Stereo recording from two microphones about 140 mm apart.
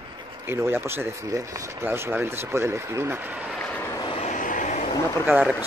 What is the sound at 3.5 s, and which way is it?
Vehicle, 10° left (ahead or behind).